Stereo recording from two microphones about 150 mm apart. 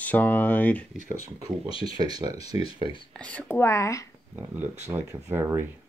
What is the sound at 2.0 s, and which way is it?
Speech, 25° right (ahead or behind).